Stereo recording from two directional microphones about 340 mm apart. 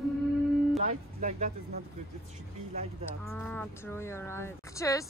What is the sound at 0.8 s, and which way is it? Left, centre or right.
Speech, right.